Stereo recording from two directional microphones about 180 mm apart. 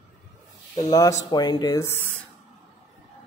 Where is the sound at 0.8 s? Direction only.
20° left (ahead or behind).